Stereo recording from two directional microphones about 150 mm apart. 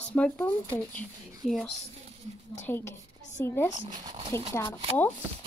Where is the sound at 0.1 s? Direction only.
10° left (ahead or behind).